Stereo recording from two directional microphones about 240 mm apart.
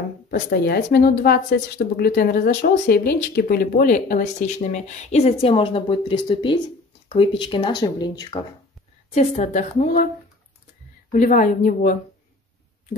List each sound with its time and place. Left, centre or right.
0.3 s speech: left
11.1 s speech: left